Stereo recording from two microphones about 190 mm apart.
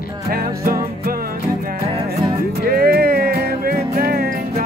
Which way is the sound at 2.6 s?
55° right (ahead or behind).